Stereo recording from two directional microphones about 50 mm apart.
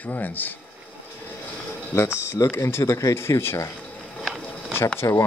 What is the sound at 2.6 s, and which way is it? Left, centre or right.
Speech, left.